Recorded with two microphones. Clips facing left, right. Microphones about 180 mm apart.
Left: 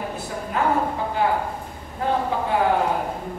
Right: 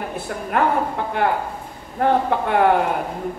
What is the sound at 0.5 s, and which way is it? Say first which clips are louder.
Speech: right 4 dB; 65° right (ahead or behind).